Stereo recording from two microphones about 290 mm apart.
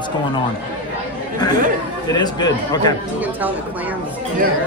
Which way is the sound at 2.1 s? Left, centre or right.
Centre.